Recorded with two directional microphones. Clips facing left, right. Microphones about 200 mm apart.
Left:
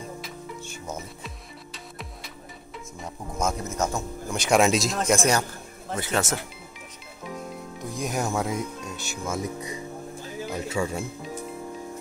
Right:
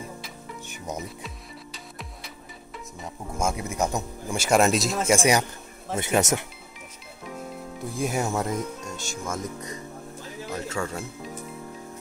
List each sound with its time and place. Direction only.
0.7 s music: 15° right (ahead or behind)
1.2 s music: centre (ahead or behind)
3.0 s speech: 10° right (ahead or behind)
5.9 s speech: 20° right (ahead or behind)
8.0 s speech: 5° right (ahead or behind)